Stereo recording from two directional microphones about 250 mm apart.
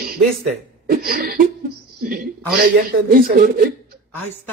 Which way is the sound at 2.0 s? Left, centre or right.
Right.